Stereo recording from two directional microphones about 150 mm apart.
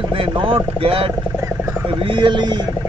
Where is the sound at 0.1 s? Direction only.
35° right (ahead or behind).